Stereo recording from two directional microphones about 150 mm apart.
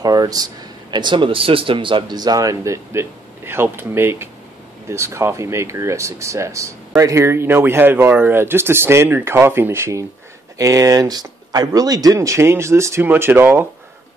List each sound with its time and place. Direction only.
0.0 s speech: 25° right (ahead or behind)